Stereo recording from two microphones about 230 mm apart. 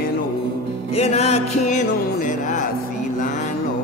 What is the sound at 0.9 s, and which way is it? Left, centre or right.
Music, left.